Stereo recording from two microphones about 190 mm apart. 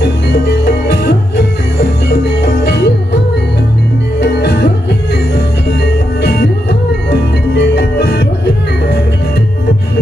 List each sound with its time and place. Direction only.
1.8 s music: 60° left (ahead or behind)
4.2 s music: 60° left (ahead or behind)
7.7 s music: 60° left (ahead or behind)